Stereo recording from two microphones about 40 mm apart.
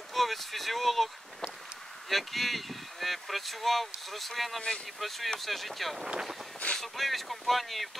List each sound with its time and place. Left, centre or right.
0.1 s speech: centre
4.6 s speech: left
4.9 s speech: centre